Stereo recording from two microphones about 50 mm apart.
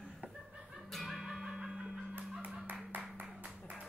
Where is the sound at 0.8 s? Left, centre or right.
Centre.